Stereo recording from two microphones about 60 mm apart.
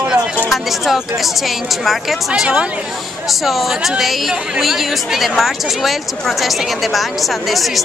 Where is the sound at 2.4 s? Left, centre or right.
Centre.